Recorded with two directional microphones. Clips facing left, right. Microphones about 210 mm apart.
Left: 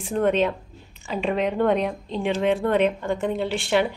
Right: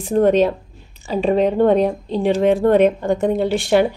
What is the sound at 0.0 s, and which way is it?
A woman's voice, 35° right (ahead or behind).